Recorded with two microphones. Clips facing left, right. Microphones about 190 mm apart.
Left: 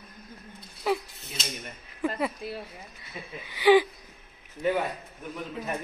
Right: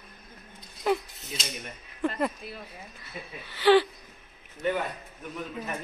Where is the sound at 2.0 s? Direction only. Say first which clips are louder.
Even; 5° left (ahead or behind).